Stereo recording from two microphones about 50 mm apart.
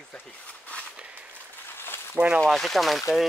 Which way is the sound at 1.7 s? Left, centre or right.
Left.